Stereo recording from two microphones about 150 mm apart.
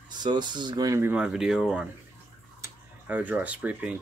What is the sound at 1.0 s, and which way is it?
Speech, 10° right (ahead or behind).